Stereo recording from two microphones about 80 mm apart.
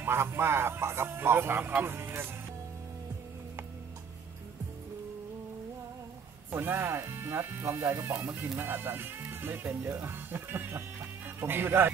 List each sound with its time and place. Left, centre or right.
0.0 s speech: right
6.5 s speech: right